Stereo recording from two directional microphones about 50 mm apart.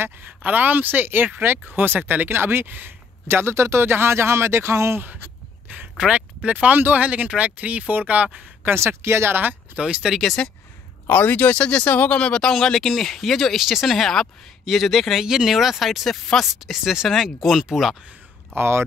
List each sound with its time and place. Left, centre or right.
0.2 s speech: right
2.2 s speech: right
6.1 s speech: right
7.2 s speech: right
8.6 s speech: right
9.3 s speech: right
9.8 s speech: right
10.4 s speech: centre
11.1 s speech: left
11.6 s speech: left
12.2 s speech: left
12.4 s speech: centre
18.5 s speech: right